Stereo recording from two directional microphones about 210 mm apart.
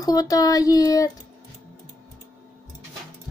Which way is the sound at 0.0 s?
15° left (ahead or behind).